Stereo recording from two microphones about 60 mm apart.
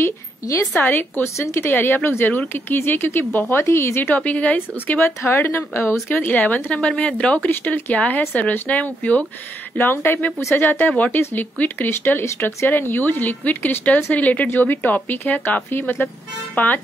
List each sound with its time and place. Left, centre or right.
0.7 s speech: left
1.7 s speech: left
3.6 s speech: left
4.1 s speech: left
5.2 s speech: left
6.0 s speech: left
7.4 s speech: left
9.8 s speech: left